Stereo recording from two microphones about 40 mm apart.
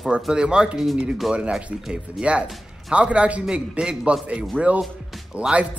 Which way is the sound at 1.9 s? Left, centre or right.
Right.